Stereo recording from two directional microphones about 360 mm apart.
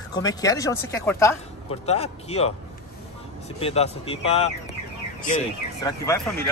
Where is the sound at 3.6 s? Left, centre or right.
Centre.